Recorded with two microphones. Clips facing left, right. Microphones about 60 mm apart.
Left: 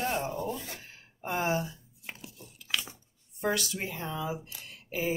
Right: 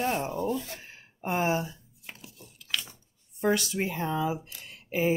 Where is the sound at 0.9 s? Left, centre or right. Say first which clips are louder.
Right 4 dB; right.